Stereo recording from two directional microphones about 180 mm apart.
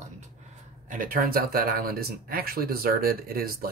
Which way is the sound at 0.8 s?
50° right (ahead or behind).